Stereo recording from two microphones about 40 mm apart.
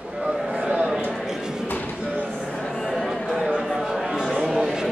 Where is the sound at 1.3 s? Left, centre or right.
Centre.